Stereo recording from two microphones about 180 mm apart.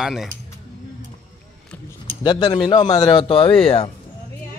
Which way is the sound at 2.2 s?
20° left (ahead or behind).